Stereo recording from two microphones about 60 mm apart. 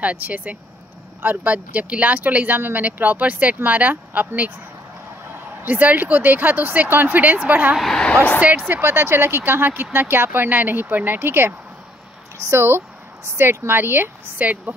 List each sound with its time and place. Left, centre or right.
0.0 s speech: right
5.6 s speech: right
7.9 s vehicle: centre
8.5 s speech: right